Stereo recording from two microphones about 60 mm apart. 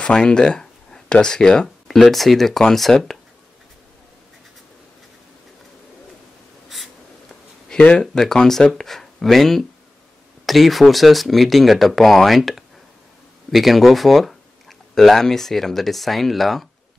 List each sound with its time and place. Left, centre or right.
0.0 s speech: centre
7.7 s speech: centre